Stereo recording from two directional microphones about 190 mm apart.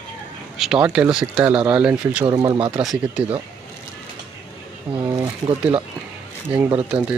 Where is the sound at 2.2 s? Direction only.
25° right (ahead or behind).